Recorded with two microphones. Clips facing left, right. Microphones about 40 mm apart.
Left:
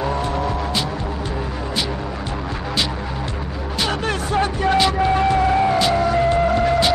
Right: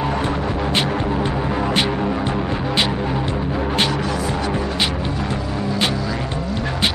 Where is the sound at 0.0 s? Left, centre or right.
Right.